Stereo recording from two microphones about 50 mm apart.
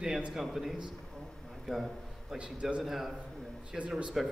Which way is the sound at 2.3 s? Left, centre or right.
Right.